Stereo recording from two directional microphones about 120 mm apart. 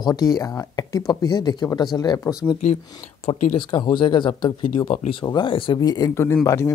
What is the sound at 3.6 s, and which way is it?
Speech, 40° left (ahead or behind).